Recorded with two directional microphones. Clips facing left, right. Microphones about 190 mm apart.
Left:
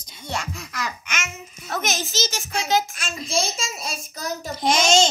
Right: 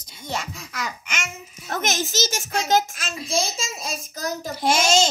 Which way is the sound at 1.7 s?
45° right (ahead or behind).